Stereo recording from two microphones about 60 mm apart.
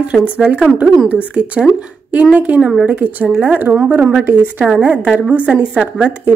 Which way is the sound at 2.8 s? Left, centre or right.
Right.